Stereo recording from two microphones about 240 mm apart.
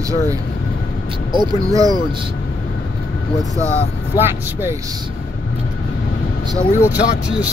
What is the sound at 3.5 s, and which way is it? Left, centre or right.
Speech, centre.